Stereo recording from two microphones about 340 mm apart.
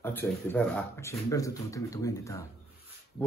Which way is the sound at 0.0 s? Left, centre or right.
Centre.